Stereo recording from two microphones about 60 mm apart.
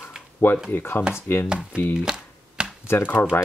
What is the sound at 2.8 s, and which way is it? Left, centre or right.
Speech, left.